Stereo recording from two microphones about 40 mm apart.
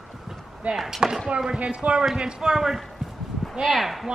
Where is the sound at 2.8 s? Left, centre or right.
Centre.